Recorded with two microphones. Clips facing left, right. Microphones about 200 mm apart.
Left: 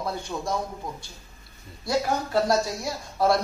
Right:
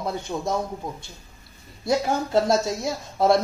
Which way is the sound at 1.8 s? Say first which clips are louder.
Right 3 dB; 25° right (ahead or behind).